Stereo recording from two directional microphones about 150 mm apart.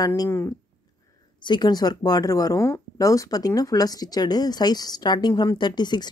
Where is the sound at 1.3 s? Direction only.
30° left (ahead or behind).